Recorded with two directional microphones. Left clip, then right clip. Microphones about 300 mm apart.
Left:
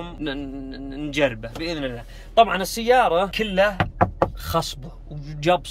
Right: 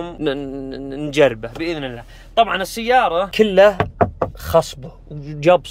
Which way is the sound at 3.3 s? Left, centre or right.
Centre.